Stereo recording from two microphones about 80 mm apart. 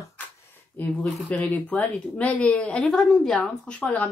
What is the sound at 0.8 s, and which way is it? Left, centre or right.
A woman's voice, left.